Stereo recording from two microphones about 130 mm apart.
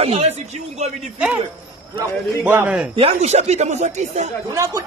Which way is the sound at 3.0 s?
55° right (ahead or behind).